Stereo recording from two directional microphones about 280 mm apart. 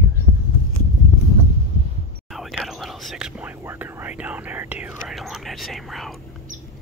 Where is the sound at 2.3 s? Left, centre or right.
Centre.